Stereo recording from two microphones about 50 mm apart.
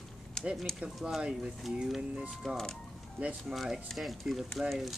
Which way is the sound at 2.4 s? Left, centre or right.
Centre.